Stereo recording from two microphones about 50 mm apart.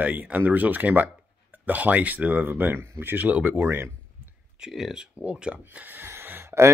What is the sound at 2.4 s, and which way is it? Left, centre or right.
Speech, right.